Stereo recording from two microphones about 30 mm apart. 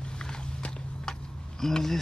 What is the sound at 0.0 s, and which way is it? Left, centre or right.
Biting, left.